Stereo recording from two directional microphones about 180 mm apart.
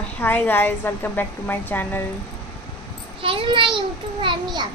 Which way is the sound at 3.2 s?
30° right (ahead or behind).